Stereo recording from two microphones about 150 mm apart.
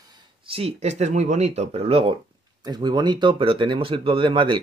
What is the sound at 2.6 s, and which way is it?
Speech, 30° right (ahead or behind).